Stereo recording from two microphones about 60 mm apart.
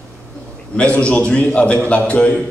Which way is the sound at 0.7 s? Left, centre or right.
Centre.